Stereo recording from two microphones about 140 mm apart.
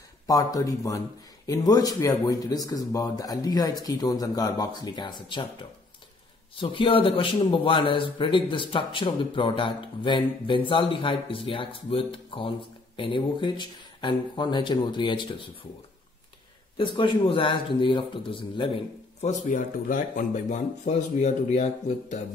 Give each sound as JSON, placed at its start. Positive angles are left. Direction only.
{"t": 0.3, "sound": "speech", "side_deg": 25}
{"t": 6.6, "sound": "a man's voice", "side_deg": 40}
{"t": 16.9, "sound": "a man's voice", "side_deg": 35}
{"t": 19.2, "sound": "speech", "side_deg": 65}